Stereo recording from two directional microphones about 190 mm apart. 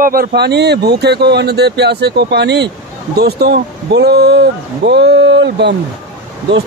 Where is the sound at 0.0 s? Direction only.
50° right (ahead or behind).